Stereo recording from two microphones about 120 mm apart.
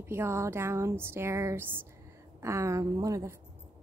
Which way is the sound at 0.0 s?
20° right (ahead or behind).